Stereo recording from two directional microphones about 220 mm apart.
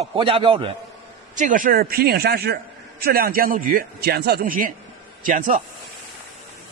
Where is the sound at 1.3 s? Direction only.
35° right (ahead or behind).